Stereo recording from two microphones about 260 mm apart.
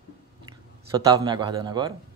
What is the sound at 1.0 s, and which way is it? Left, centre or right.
Speech, centre.